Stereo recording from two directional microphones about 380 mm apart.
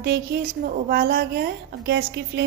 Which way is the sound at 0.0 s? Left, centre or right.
Right.